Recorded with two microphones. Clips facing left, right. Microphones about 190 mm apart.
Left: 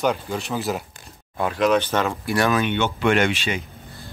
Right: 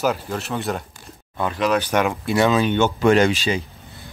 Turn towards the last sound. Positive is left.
turn(degrees=-35)  # may be behind; listen again after turning